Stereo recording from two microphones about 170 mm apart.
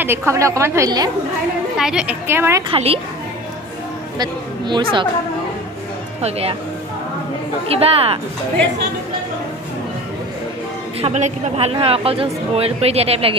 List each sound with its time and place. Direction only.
0.0 s a woman's voice: 15° right (ahead or behind)
1.8 s a woman's voice: 5° right (ahead or behind)
2.7 s speech: 35° right (ahead or behind)
4.2 s speech: 25° right (ahead or behind)
7.6 s speech: 35° right (ahead or behind)
11.0 s speech: 40° right (ahead or behind)